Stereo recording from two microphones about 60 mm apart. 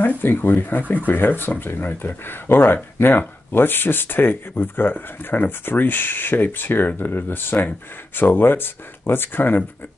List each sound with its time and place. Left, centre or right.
0.0 s speech: left